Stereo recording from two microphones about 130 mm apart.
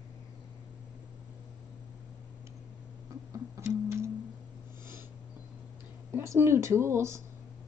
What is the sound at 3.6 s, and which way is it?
Music, 20° right (ahead or behind).